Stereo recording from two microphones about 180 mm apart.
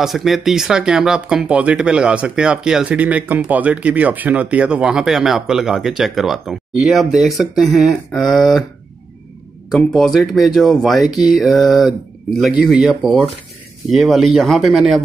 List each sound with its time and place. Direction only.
0.0 s speech: centre (ahead or behind)
9.7 s speech: centre (ahead or behind)